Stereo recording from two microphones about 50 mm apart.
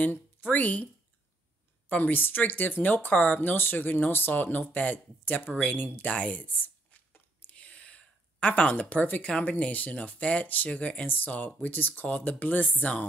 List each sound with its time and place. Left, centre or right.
0.0 s speech: left
1.9 s speech: left
6.1 s speech: left
7.4 s a sound: left
9.6 s speech: left
11.1 s speech: left